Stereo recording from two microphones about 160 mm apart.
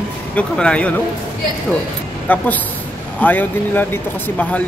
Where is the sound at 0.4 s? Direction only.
5° left (ahead or behind).